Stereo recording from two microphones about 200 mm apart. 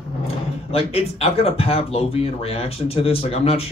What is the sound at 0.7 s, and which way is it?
Speech, 30° left (ahead or behind).